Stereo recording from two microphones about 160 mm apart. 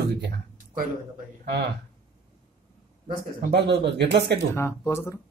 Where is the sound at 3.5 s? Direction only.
90° right.